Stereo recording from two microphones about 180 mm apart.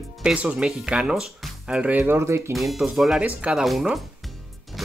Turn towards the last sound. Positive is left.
turn(degrees=0)  # may be behind; listen again after turning